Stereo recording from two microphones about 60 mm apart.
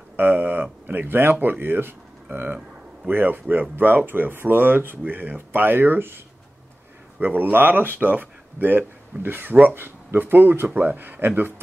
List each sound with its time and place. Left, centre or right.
0.1 s speech: right